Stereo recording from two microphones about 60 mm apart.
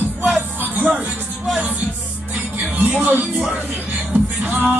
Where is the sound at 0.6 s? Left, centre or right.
Right.